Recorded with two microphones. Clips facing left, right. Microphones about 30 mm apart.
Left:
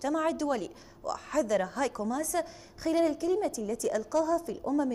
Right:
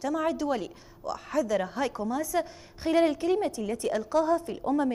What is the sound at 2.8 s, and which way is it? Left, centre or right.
A woman's voice, right.